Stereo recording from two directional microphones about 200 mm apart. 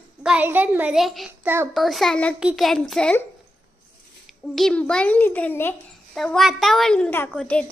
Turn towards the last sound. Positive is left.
turn(degrees=5)  # may be behind; listen again after turning